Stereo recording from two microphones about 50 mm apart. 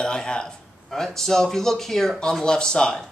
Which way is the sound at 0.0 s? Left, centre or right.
Centre.